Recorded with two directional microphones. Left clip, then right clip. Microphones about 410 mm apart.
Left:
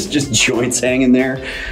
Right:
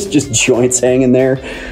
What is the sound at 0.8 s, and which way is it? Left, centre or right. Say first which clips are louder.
Speech: right 3 dB; centre.